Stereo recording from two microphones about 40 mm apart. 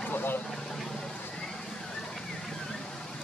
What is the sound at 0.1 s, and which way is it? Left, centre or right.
Vehicle, left.